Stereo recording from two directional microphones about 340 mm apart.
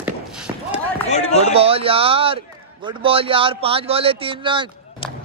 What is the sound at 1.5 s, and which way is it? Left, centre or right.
A man's voice, centre.